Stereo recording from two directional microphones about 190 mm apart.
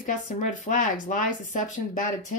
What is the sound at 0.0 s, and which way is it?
Speech, 40° left (ahead or behind).